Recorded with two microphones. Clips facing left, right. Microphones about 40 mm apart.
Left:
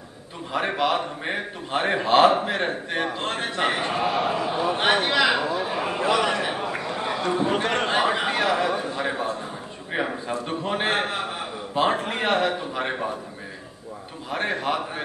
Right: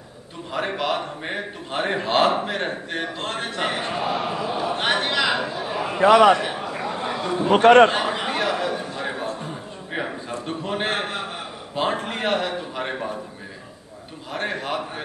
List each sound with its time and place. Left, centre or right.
0.5 s a man's voice: centre
5.6 s a sound: centre
5.9 s a man's voice: right
6.4 s a sound: centre
7.6 s a man's voice: right
7.9 s a man's voice: centre
9.9 s a sound: centre
10.6 s a man's voice: centre
14.3 s a man's voice: centre